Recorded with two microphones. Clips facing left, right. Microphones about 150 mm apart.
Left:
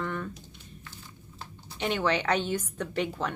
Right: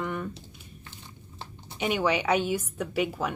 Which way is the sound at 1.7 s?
10° right (ahead or behind).